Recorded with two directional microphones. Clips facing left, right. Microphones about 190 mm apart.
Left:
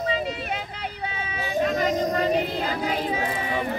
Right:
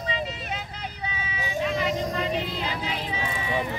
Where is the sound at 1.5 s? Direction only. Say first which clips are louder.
Left 4 dB; 40° left (ahead or behind).